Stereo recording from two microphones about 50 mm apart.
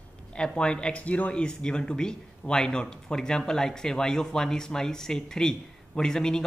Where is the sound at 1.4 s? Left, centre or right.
Centre.